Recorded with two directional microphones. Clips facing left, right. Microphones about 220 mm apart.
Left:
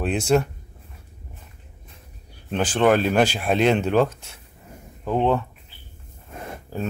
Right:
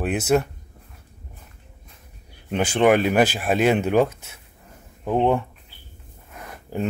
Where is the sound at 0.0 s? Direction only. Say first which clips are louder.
Even; 5° right (ahead or behind).